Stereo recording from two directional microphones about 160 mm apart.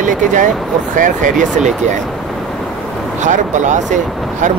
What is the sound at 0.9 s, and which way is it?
Speech, 55° right (ahead or behind).